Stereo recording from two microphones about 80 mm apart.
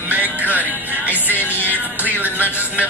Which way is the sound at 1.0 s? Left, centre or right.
Left.